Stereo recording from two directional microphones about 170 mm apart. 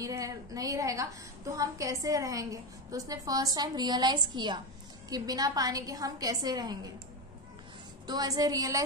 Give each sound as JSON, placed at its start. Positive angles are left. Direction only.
{"t": 0.0, "sound": "a woman's voice", "side_deg": -20}
{"t": 8.1, "sound": "a woman's voice", "side_deg": -20}